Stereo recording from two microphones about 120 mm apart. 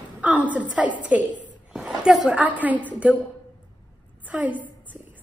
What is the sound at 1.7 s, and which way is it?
A woman's voice, 5° right (ahead or behind).